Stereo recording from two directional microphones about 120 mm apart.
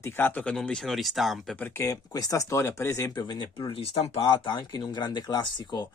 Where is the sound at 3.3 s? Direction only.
40° left (ahead or behind).